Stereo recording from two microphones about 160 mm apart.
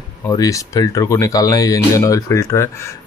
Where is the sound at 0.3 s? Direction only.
20° left (ahead or behind).